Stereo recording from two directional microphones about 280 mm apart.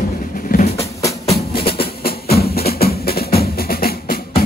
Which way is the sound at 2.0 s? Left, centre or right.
Left.